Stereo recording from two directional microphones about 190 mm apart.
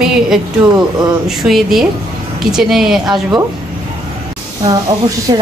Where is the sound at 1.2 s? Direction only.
Centre (ahead or behind).